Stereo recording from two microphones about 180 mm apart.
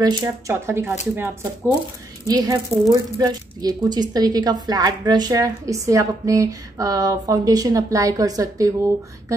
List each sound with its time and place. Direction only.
0.0 s speech: 20° right (ahead or behind)